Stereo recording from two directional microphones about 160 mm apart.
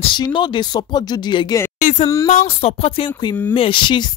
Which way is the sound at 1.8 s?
50° left (ahead or behind).